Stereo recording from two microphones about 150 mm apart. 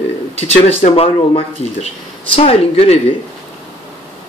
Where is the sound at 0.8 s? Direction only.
45° left (ahead or behind).